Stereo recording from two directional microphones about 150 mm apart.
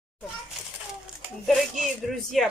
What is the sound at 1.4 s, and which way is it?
Speech, centre (ahead or behind).